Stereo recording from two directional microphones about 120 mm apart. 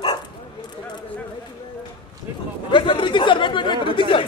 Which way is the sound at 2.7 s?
45° left (ahead or behind).